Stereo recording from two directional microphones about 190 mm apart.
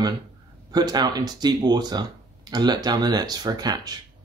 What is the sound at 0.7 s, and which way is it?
Speech, 20° right (ahead or behind).